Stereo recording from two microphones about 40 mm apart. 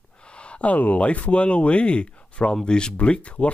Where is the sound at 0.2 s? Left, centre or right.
Left.